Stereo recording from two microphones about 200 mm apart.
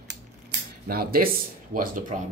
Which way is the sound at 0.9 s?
50° right (ahead or behind).